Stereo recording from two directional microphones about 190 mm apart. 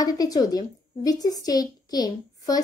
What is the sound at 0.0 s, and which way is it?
Speech, 20° left (ahead or behind).